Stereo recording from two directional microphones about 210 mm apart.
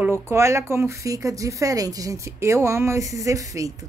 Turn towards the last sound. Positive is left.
turn(degrees=-15)  # may be behind; listen again after turning